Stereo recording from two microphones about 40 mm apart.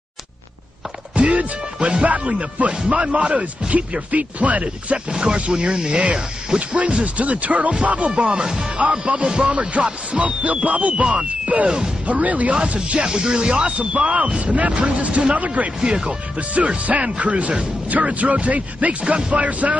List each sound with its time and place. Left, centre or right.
1.1 s music: right
2.0 s speech: right
5.1 s speech: right
8.1 s speech: right